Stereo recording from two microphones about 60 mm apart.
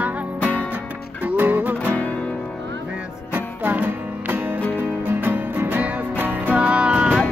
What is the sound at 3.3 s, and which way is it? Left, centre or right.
Music, right.